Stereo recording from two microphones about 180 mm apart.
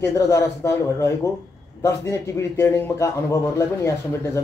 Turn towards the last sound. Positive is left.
turn(degrees=15)  # may be behind; listen again after turning